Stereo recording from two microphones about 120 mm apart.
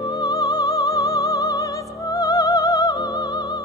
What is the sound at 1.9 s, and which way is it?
Music, 30° left (ahead or behind).